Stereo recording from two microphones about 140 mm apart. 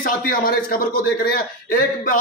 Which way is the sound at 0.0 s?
90° left.